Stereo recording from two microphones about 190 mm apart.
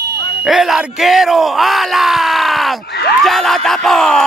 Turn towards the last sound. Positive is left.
turn(degrees=0)  # may be behind; listen again after turning